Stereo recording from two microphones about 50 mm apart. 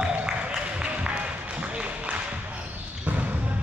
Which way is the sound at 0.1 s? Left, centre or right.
Right.